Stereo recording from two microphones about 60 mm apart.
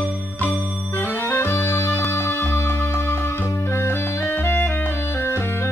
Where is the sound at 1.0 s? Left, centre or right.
Left.